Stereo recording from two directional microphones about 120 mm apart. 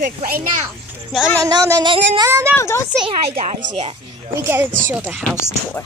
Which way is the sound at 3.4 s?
85° right.